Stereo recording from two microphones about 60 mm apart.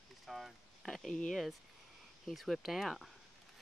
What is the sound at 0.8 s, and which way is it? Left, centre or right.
Speech, centre.